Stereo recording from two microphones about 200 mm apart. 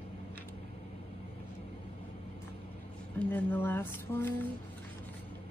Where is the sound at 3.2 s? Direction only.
10° left (ahead or behind).